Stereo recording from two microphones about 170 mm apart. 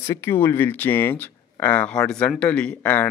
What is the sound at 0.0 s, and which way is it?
Speech, 15° left (ahead or behind).